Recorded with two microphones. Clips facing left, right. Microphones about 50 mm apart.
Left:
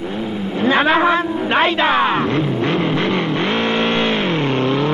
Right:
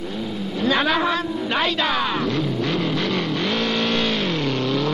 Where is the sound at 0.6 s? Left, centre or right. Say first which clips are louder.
Left 5 dB; left.